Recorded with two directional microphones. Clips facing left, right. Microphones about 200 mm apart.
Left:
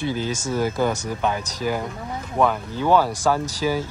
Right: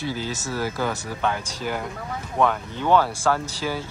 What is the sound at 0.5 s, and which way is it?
Speech, 20° left (ahead or behind).